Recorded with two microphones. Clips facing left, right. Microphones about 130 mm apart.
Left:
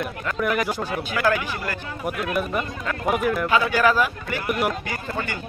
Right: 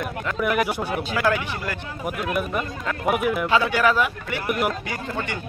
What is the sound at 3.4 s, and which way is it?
Speech, 25° right (ahead or behind).